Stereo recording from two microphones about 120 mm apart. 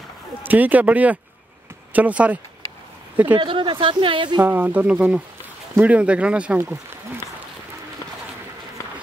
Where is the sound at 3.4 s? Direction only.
45° right (ahead or behind).